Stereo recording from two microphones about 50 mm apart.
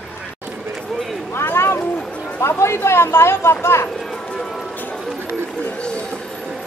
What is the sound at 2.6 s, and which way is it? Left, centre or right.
Speech, left.